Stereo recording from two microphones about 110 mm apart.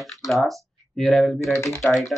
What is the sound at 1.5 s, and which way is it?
Speech, 25° left (ahead or behind).